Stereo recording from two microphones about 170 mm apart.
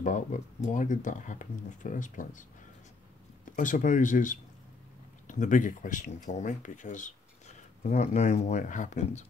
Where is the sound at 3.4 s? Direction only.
50° left (ahead or behind).